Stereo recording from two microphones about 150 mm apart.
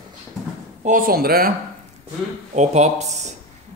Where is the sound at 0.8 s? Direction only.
65° right (ahead or behind); by 1.5 s 85° right.